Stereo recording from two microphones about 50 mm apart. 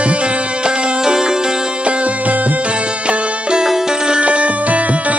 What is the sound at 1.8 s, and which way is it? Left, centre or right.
Music, right.